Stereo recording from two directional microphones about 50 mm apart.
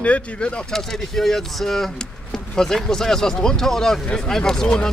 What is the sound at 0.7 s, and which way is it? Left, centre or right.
Speech, centre.